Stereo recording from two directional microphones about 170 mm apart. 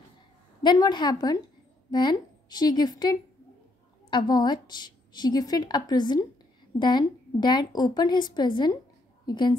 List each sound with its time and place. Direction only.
0.6 s a woman's voice: 25° left (ahead or behind)